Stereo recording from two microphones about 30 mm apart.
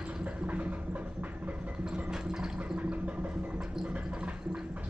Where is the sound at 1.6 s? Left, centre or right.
Right.